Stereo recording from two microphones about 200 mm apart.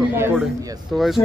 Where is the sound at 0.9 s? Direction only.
5° left (ahead or behind).